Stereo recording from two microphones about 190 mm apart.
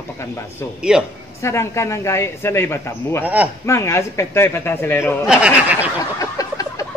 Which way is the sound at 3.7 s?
15° left (ahead or behind).